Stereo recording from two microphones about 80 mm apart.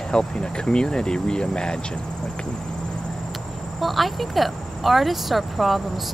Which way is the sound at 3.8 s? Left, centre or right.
Centre.